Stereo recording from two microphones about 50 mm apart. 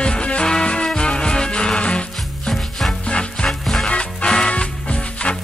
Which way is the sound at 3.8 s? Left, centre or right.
Centre.